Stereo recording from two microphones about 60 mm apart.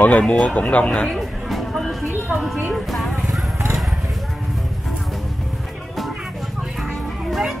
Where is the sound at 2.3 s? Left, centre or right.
Centre.